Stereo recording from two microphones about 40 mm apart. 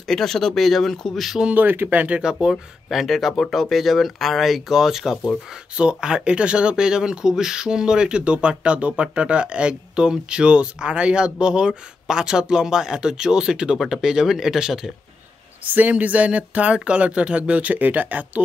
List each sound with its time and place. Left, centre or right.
0.0 s speech: centre
1.5 s speech: right
2.1 s speech: centre
2.5 s speech: centre
5.8 s speech: right
15.9 s speech: right